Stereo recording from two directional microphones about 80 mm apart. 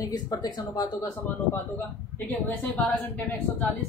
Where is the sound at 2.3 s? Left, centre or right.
Left.